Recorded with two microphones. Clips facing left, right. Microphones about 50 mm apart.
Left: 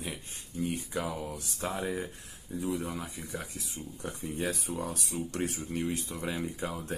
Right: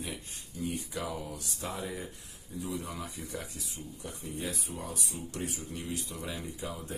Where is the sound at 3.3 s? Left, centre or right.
Left.